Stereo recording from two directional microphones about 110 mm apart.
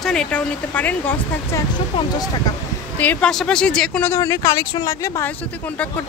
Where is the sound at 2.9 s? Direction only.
15° left (ahead or behind).